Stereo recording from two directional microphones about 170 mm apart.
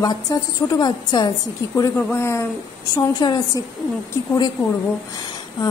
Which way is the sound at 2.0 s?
10° left (ahead or behind).